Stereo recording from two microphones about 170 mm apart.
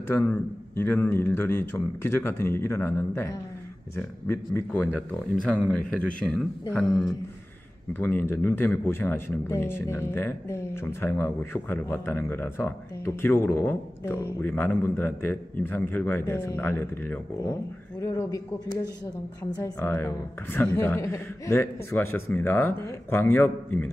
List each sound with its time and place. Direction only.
0.1 s speech: 10° left (ahead or behind)
7.9 s speech: 10° left (ahead or behind)